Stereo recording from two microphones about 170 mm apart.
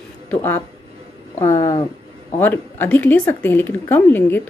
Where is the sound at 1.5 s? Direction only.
35° left (ahead or behind).